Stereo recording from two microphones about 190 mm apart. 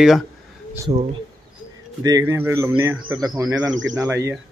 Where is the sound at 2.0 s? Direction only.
15° right (ahead or behind).